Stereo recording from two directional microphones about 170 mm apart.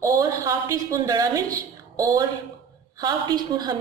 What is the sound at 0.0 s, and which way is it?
A woman's voice, 15° right (ahead or behind).